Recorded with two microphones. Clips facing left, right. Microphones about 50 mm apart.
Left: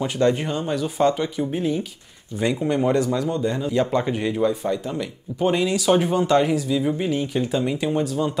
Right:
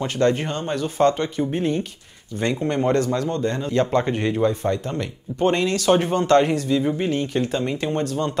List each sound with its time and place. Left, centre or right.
0.0 s speech: centre
4.0 s speech: centre
6.8 s speech: centre
7.7 s speech: centre